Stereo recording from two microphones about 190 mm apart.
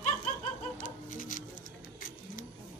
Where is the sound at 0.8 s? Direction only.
45° left (ahead or behind).